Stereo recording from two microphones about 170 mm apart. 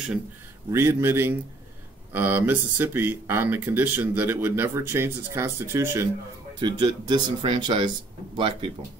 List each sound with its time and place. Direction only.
0.7 s speech: 15° right (ahead or behind)
6.6 s speech: 25° right (ahead or behind)